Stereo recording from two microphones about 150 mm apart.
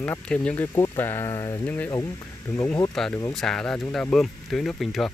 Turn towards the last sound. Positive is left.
turn(degrees=0)  # may be behind; listen again after turning